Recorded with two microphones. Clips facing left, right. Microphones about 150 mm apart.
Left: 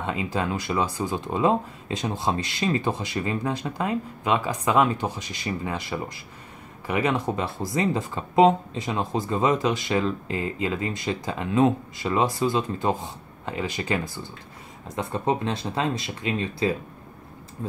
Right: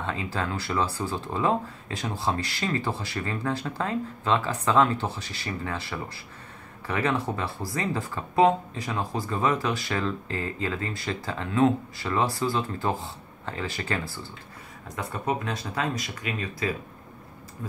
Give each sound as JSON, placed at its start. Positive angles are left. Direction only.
{"t": 0.0, "sound": "speech", "side_deg": 15}